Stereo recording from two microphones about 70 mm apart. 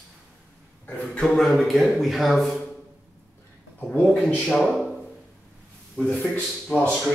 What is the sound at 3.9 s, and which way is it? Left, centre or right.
Speech, centre.